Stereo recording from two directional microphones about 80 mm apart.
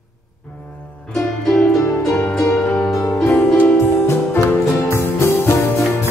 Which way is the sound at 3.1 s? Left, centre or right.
Left.